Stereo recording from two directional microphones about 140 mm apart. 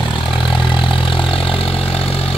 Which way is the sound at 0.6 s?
35° left (ahead or behind).